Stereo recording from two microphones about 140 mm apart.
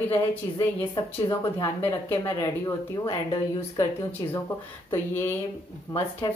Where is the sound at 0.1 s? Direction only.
15° left (ahead or behind).